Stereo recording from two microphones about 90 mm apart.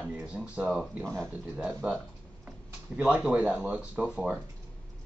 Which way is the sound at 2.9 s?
10° right (ahead or behind).